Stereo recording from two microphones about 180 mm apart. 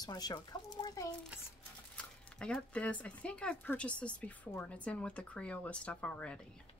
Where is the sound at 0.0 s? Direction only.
20° left (ahead or behind).